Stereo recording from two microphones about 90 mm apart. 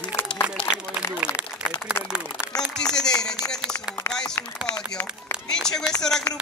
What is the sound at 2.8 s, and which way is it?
Speech, 10° left (ahead or behind).